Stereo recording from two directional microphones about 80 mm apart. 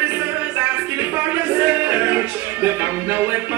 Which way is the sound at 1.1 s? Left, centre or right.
Right.